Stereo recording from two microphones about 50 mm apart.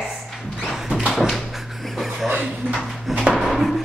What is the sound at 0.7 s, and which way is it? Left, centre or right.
Tap, centre.